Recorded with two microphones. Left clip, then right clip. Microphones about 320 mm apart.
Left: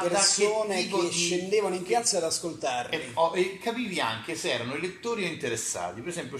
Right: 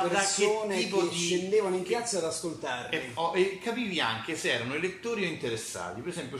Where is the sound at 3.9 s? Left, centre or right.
Centre.